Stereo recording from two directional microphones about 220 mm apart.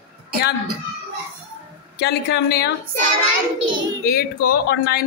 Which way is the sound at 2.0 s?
50° left (ahead or behind).